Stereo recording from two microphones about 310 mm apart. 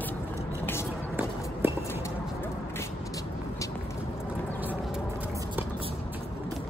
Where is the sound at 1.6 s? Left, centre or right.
Centre.